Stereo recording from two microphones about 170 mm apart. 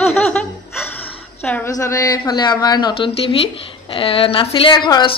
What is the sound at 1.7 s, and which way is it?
A woman's voice, 20° left (ahead or behind).